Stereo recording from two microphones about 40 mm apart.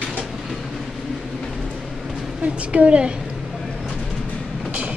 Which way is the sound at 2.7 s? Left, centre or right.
Right.